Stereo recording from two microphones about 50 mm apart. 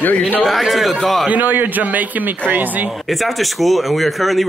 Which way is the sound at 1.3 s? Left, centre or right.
Right.